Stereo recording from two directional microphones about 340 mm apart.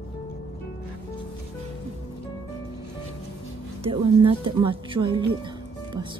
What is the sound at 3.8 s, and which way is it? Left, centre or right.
Speech, centre.